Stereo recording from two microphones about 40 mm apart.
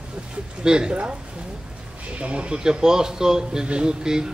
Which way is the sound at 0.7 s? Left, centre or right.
Right.